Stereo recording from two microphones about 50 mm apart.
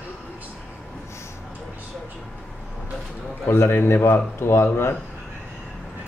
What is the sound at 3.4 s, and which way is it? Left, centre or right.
A man's voice, left.